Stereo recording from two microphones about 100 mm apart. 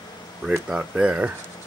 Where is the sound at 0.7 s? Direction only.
10° right (ahead or behind).